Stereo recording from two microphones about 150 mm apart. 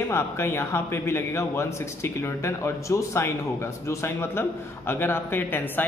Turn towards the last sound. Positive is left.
turn(degrees=15)  # may be behind; listen again after turning